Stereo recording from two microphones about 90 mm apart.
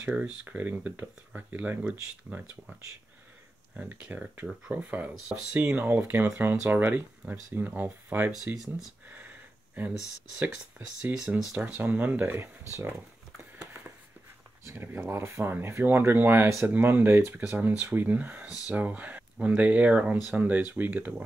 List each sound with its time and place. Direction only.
0.0 s speech: 15° right (ahead or behind)
3.7 s speech: 15° right (ahead or behind)
9.1 s a sound: 20° right (ahead or behind)
10.3 s speech: 15° right (ahead or behind)
13.4 s a sound: 20° right (ahead or behind)
14.7 s speech: 25° right (ahead or behind)